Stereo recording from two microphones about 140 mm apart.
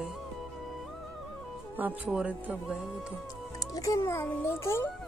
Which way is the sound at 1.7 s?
10° right (ahead or behind).